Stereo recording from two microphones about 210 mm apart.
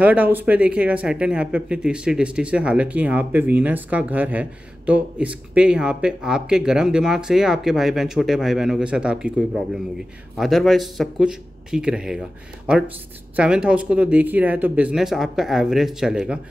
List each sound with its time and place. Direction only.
0.0 s speech: 5° right (ahead or behind)